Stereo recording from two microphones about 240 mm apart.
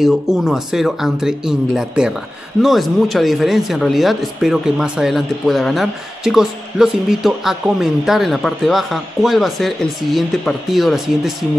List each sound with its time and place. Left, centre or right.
0.0 s speech: centre